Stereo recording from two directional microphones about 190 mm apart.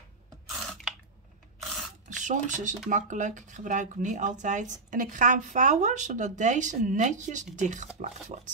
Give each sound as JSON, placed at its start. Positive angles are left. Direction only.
{"t": 0.5, "sound": "a sound", "side_deg": 0}
{"t": 1.6, "sound": "filing", "side_deg": 0}
{"t": 2.0, "sound": "speech", "side_deg": -40}